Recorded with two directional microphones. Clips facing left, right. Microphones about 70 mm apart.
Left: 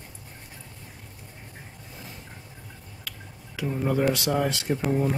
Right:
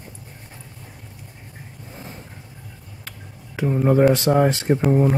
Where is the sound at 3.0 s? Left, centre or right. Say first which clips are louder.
Right 2 dB; right.